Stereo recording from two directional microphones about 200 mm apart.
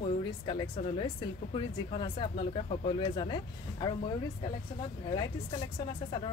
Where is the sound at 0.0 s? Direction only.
30° left (ahead or behind).